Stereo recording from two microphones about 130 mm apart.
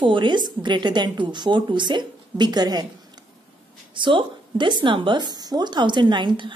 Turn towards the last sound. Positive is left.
turn(degrees=-35)  # may be behind; listen again after turning